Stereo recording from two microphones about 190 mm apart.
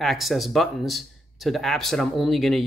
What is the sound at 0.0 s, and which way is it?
Speech, centre (ahead or behind).